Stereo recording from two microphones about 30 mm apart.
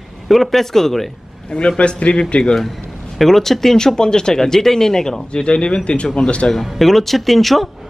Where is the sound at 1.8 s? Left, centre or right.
Left.